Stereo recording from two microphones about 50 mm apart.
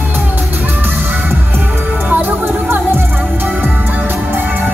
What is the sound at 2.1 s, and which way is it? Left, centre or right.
Music, right.